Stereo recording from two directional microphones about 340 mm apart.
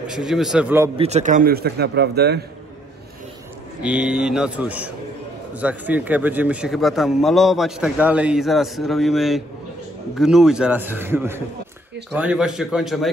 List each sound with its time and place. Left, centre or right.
0.0 s a man's voice: centre
1.0 s speech: right
3.8 s a man's voice: centre